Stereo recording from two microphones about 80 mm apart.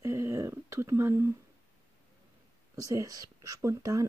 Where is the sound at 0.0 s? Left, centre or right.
Right.